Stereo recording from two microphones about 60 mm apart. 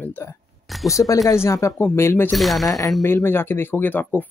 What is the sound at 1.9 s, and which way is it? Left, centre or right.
Speech, left.